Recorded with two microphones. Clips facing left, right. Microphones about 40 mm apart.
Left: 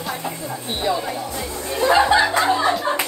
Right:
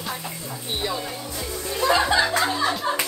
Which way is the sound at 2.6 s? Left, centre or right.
Centre.